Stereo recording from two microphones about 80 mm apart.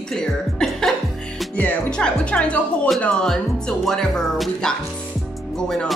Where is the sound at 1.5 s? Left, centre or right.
Centre.